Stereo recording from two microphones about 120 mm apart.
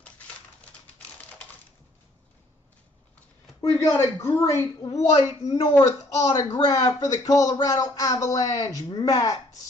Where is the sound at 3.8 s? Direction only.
25° left (ahead or behind).